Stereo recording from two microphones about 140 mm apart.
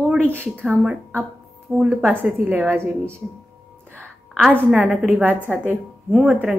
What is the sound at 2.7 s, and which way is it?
Speech, 15° right (ahead or behind).